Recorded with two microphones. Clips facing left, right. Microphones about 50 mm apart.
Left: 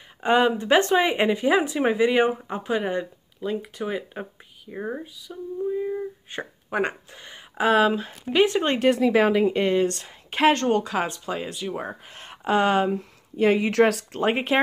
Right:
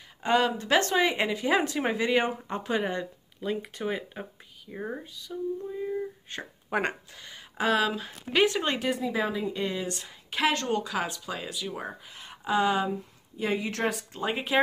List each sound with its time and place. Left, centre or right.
0.2 s speech: left
1.5 s speech: centre
4.1 s speech: centre
7.2 s a sound: left
7.7 s speech: left
8.7 s speech: left
9.0 s speech: left
12.1 s speech: left